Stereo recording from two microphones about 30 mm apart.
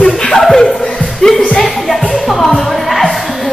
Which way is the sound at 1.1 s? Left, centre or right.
Centre.